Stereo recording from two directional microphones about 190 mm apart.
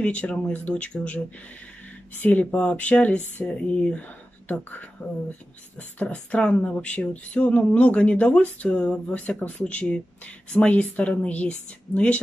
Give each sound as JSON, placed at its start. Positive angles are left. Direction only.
{"t": 0.0, "sound": "speech", "side_deg": 5}